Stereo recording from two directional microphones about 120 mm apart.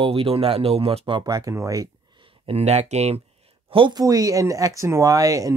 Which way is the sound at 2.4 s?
60° right (ahead or behind).